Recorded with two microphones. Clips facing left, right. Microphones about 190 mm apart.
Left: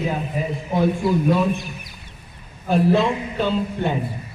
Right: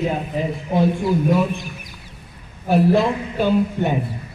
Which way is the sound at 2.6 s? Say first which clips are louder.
Right 2 dB; 10° right (ahead or behind).